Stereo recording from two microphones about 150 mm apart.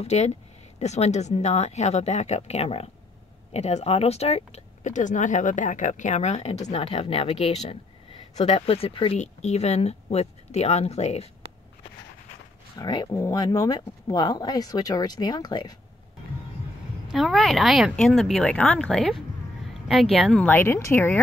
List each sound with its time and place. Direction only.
0.0 s speech: 45° left (ahead or behind)
9.2 s speech: 50° left (ahead or behind)
12.7 s speech: 30° left (ahead or behind)
17.1 s speech: centre (ahead or behind); by 21.2 s 15° left (ahead or behind)